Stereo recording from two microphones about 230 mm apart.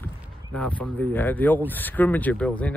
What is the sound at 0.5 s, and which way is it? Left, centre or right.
Speech, centre.